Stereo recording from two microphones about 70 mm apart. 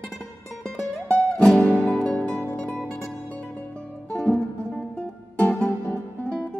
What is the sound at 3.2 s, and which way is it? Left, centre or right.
Music, centre.